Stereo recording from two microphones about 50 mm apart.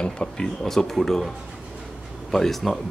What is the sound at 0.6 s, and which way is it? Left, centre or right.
Speech, centre.